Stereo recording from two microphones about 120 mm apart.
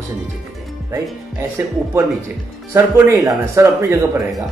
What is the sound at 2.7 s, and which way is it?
A man's voice, 20° right (ahead or behind).